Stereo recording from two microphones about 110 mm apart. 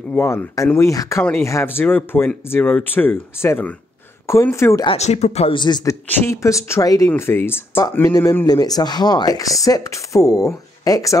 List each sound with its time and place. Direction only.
0.1 s speech: 15° left (ahead or behind)
4.9 s speech: 80° left
5.5 s speech: 40° left (ahead or behind)
6.0 s speech: 25° left (ahead or behind)
7.1 s speech: 20° left (ahead or behind)